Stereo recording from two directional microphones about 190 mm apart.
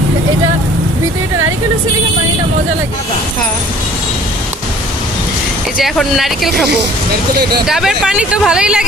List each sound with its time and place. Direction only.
5.8 s speech: centre (ahead or behind)
7.6 s speech: centre (ahead or behind)